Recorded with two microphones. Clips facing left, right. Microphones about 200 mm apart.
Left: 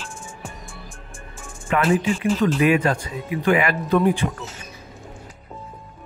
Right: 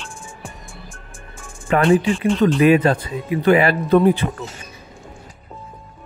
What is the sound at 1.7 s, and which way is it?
Speech, 35° right (ahead or behind).